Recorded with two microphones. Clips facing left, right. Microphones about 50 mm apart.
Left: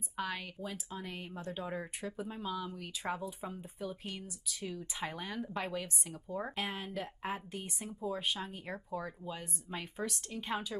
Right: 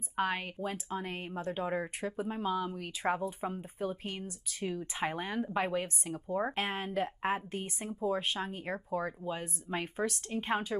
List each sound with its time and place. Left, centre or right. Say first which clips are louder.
0.1 s speech: right 6 dB; right
6.5 s speech: right 5 dB; right